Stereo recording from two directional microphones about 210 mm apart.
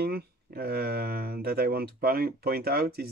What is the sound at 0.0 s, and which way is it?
Speech, 45° right (ahead or behind).